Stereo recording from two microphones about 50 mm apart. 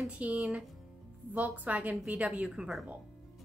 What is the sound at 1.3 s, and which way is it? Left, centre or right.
Speech, right.